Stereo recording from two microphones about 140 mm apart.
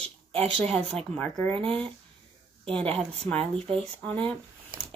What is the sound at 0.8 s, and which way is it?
Speech, 45° right (ahead or behind).